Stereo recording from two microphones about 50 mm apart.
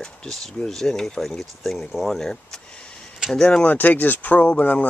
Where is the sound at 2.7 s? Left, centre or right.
Left.